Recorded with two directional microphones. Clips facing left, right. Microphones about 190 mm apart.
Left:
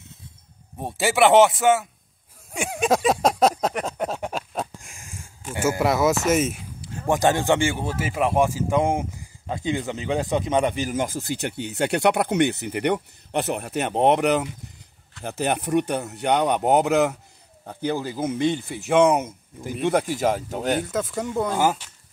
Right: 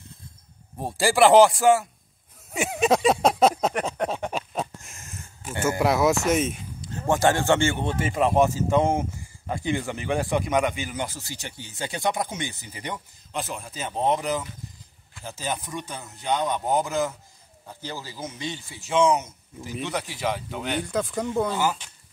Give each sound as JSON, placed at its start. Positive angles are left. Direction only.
{"t": 0.7, "sound": "speech", "side_deg": 0}
{"t": 2.5, "sound": "a sound", "side_deg": 0}
{"t": 4.9, "sound": "a sound", "side_deg": 10}
{"t": 5.5, "sound": "speech", "side_deg": 5}
{"t": 10.9, "sound": "speech", "side_deg": 50}
{"t": 17.6, "sound": "speech", "side_deg": 55}
{"t": 20.8, "sound": "speech", "side_deg": 0}
{"t": 21.5, "sound": "speech", "side_deg": 45}